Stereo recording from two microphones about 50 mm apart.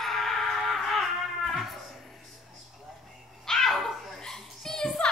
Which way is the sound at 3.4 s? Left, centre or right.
Centre.